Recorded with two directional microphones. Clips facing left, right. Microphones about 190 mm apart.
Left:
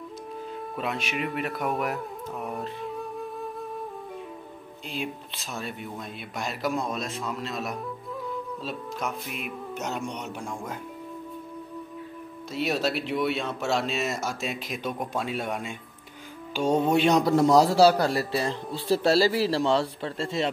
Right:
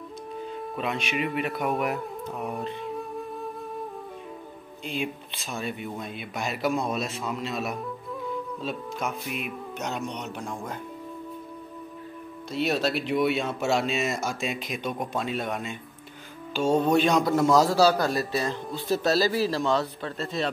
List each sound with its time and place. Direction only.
0.7 s speech: centre (ahead or behind)
4.8 s speech: centre (ahead or behind)
12.5 s a man's voice: 5° left (ahead or behind); by 20.4 s 25° left (ahead or behind)